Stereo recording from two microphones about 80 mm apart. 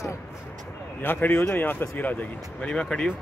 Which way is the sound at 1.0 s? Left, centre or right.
Left.